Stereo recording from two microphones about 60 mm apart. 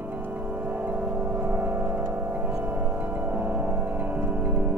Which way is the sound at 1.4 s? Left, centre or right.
Right.